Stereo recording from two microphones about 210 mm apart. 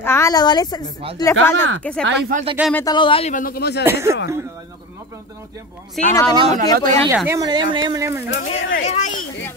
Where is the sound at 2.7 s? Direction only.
20° left (ahead or behind); by 3.8 s 50° left (ahead or behind).